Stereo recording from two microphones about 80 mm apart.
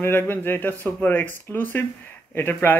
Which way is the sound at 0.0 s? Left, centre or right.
Left.